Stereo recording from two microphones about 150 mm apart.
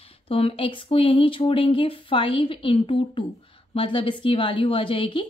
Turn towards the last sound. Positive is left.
turn(degrees=35)  # may be behind; listen again after turning